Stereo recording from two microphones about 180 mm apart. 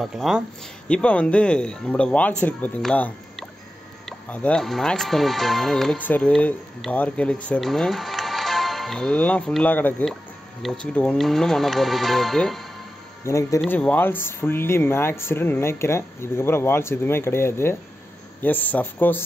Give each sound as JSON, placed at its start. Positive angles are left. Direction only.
{"t": 0.0, "sound": "speech", "side_deg": 0}
{"t": 13.2, "sound": "speech", "side_deg": 15}